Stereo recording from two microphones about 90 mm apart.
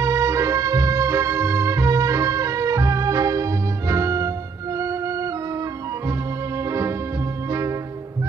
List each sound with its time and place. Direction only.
0.0 s music: 35° right (ahead or behind)